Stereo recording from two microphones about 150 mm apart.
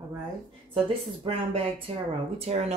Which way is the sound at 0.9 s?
40° right (ahead or behind).